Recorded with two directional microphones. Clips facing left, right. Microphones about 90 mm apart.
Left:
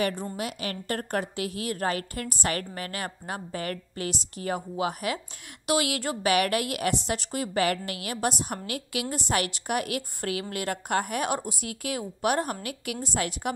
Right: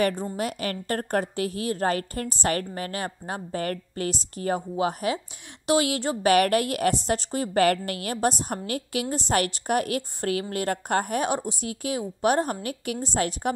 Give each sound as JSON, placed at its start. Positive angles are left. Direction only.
{"t": 0.4, "sound": "a woman's voice", "side_deg": -45}
{"t": 6.2, "sound": "a woman's voice", "side_deg": -40}